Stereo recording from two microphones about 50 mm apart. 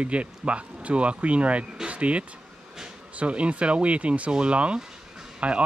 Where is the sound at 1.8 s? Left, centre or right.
Right.